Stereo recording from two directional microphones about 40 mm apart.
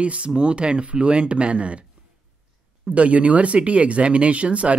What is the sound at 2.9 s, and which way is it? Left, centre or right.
Speech, right.